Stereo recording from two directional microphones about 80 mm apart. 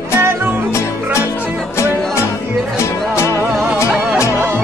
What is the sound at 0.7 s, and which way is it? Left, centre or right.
Music, left.